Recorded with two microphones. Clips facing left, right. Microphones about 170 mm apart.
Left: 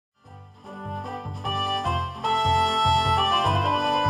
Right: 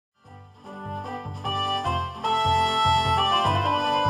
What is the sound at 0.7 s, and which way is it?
Music, centre (ahead or behind).